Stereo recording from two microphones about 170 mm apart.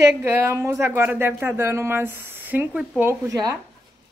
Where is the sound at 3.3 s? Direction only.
20° right (ahead or behind).